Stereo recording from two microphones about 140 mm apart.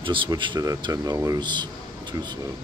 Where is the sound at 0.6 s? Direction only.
25° right (ahead or behind).